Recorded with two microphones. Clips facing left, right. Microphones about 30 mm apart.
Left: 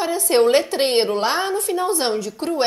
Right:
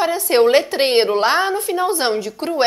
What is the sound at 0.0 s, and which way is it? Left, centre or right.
A woman's voice, right.